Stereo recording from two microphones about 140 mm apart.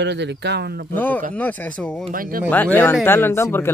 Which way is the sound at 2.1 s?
90° right.